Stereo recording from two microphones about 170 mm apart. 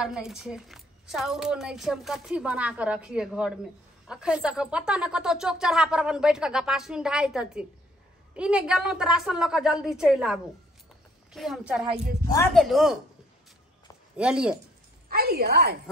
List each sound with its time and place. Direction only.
0.0 s a woman's voice: 5° right (ahead or behind)
11.8 s speech: 35° right (ahead or behind)
12.5 s a woman's voice: centre (ahead or behind)
14.1 s a woman's voice: 5° right (ahead or behind)
15.0 s a woman's voice: 65° right (ahead or behind)